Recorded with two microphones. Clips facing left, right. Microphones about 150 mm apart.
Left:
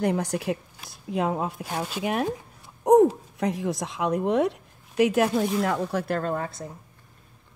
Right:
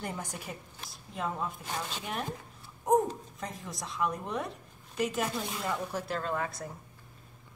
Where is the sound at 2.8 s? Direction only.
70° left (ahead or behind).